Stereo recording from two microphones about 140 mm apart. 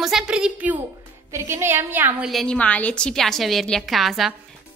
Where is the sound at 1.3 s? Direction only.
20° right (ahead or behind).